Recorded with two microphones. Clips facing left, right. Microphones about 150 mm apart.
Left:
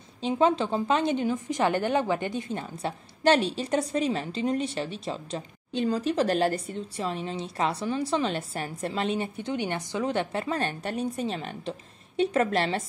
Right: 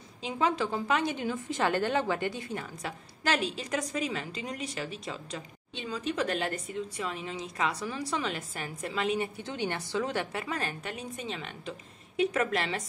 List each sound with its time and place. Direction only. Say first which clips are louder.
0.2 s a woman's voice: left 6 dB; 25° left (ahead or behind)